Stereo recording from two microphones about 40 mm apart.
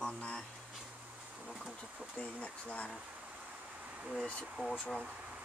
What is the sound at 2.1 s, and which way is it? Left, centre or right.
Speech, left.